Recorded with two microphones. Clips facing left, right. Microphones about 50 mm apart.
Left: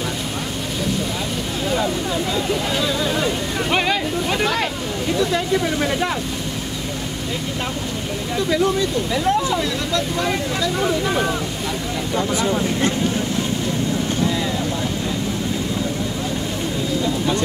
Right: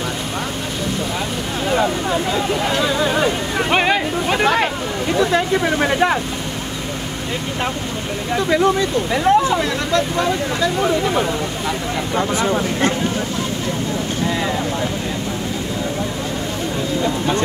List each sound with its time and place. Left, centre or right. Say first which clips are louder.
1.7 s a sound: right 4 dB; right
3.7 s a sound: right 3 dB; right
5.2 s speech: right 3 dB; right
8.4 s speech: right 3 dB; right
9.1 s speech: right 6 dB; right
12.2 s speech: right 2 dB; right